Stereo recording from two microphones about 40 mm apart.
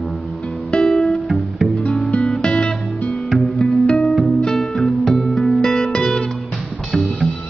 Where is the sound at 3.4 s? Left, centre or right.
Centre.